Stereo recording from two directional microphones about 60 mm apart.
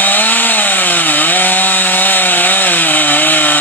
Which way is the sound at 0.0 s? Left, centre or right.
Left.